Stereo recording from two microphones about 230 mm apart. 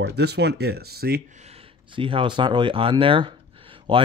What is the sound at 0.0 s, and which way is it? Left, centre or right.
Speech, right.